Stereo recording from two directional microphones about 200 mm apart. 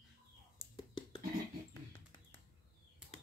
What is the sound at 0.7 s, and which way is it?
Whispering, 20° left (ahead or behind).